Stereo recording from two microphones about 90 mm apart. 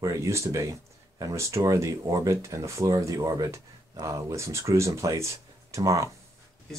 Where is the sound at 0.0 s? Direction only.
35° right (ahead or behind).